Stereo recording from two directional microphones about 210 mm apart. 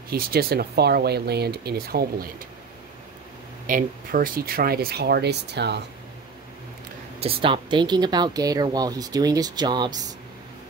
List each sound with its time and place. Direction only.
0.1 s speech: 45° right (ahead or behind)
3.6 s speech: 40° right (ahead or behind)
7.2 s speech: 25° right (ahead or behind)